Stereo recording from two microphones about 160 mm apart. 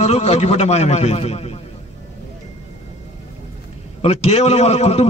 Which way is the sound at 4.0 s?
40° left (ahead or behind).